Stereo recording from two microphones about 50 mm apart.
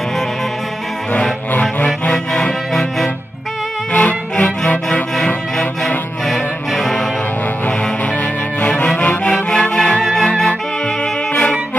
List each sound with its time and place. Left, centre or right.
1.5 s music: left
2.0 s music: left
3.9 s music: left
6.2 s music: centre
8.5 s music: left